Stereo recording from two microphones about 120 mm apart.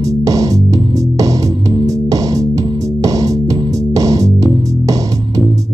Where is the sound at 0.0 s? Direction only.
30° right (ahead or behind).